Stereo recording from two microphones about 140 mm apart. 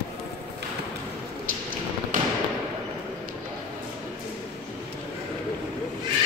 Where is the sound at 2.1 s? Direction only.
70° right (ahead or behind).